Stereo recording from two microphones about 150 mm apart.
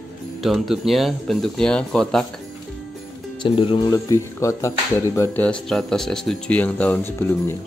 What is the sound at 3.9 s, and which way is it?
Speech, 20° left (ahead or behind).